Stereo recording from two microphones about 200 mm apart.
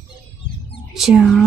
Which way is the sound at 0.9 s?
Centre (ahead or behind).